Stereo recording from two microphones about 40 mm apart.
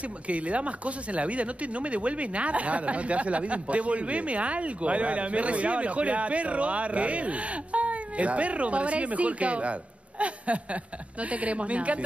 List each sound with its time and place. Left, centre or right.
0.0 s speech: right